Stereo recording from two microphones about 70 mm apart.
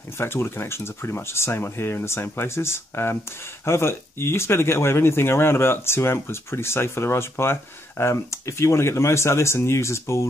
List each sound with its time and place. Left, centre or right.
0.2 s speech: left